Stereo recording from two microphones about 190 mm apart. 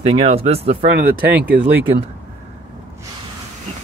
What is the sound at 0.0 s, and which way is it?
Speech, 30° right (ahead or behind).